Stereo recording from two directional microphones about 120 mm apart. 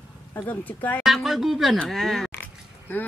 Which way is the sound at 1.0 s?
Centre (ahead or behind).